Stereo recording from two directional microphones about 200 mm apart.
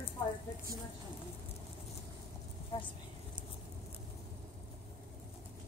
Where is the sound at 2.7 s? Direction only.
25° left (ahead or behind).